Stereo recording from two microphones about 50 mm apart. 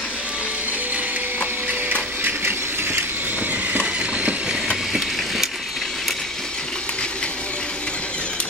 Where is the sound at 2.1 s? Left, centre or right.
Right.